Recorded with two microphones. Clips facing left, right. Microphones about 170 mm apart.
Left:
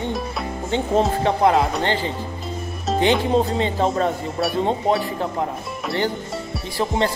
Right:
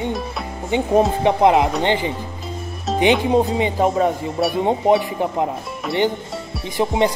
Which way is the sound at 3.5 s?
10° right (ahead or behind).